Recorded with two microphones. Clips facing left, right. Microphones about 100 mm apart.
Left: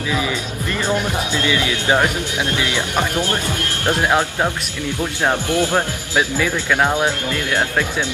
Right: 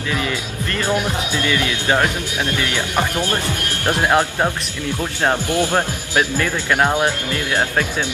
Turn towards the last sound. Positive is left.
turn(degrees=-15)  # may be behind; listen again after turning